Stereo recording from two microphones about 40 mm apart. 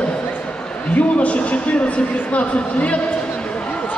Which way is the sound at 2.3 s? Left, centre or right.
Left.